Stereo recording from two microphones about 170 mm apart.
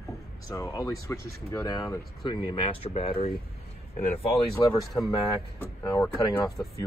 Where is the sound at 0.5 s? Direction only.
20° left (ahead or behind); by 3.3 s 35° left (ahead or behind).